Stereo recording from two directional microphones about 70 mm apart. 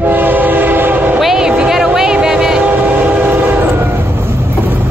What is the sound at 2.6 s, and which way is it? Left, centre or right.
Train, right.